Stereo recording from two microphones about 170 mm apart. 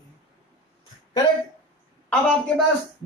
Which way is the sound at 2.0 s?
5° left (ahead or behind).